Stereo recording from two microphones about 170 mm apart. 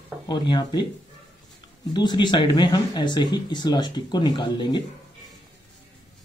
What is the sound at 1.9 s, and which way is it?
Speech, 25° left (ahead or behind).